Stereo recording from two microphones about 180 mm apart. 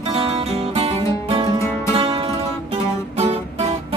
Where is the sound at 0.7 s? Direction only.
35° right (ahead or behind).